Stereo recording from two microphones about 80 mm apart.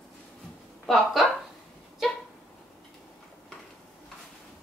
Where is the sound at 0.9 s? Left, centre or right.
Centre.